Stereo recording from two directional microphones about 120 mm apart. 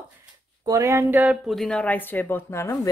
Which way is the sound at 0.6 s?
25° right (ahead or behind).